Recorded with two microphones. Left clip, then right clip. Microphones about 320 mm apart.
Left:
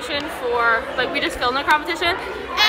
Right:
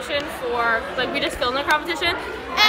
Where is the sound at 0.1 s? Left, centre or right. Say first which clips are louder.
Left 2 dB; centre.